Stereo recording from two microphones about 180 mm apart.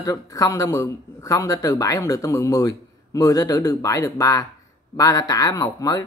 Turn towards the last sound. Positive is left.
turn(degrees=20)  # may be behind; listen again after turning